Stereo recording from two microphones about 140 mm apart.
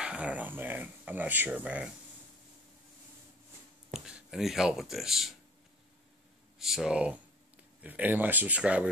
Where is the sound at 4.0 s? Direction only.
5° right (ahead or behind).